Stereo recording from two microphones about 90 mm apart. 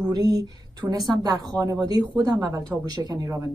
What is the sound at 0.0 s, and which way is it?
A woman's voice, 50° right (ahead or behind).